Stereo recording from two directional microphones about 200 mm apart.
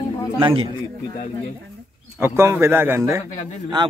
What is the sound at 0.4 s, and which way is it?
Speech, 25° right (ahead or behind).